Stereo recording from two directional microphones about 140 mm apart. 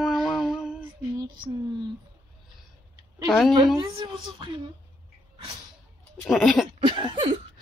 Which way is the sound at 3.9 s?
35° right (ahead or behind).